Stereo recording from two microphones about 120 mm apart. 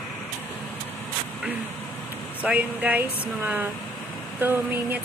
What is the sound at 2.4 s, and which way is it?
Speech, 10° right (ahead or behind).